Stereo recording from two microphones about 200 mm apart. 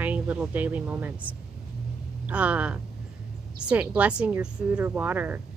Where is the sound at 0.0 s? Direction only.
5° right (ahead or behind).